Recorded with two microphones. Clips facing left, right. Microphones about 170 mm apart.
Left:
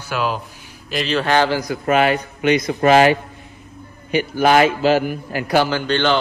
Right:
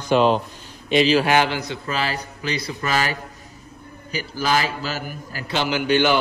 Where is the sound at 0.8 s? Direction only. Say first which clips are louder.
Right 7 dB; centre (ahead or behind).